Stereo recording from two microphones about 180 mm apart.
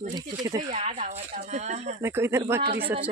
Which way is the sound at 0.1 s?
25° right (ahead or behind).